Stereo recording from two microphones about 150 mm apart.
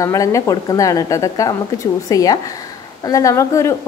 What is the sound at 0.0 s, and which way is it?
A woman's voice, 20° left (ahead or behind).